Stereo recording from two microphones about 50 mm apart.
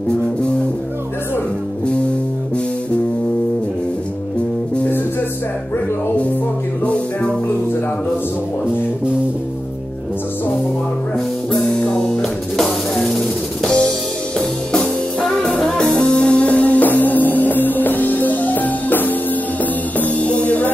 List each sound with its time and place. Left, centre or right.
6.8 s music: left
11.9 s music: centre
15.8 s music: left